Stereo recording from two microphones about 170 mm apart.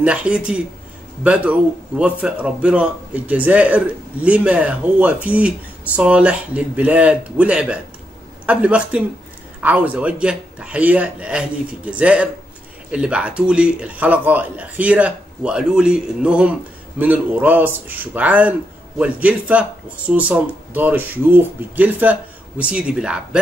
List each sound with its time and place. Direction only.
0.0 s a man's voice: 5° right (ahead or behind)